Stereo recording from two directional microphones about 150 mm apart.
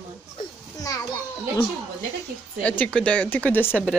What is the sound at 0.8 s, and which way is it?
Children playing, 25° left (ahead or behind).